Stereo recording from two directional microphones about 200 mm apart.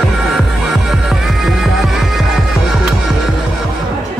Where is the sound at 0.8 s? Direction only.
Centre (ahead or behind).